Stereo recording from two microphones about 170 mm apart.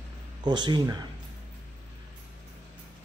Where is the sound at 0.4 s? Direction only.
25° right (ahead or behind).